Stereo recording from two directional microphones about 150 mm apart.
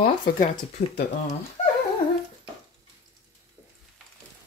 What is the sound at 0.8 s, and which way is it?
Speech, 50° left (ahead or behind).